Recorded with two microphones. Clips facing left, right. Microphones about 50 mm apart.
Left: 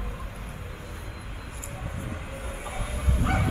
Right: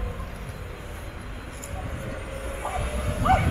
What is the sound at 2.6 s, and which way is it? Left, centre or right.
Bow-wow, right.